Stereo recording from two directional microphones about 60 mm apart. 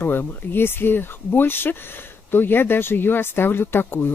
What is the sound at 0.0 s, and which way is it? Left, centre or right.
Speech, left.